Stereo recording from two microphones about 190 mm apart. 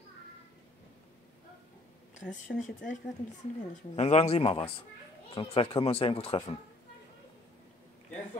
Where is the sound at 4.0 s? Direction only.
35° left (ahead or behind).